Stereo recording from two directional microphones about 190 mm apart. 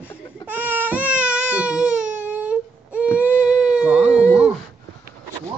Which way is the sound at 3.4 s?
5° right (ahead or behind).